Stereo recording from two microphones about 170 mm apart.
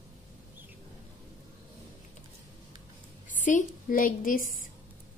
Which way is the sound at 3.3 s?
50° left (ahead or behind).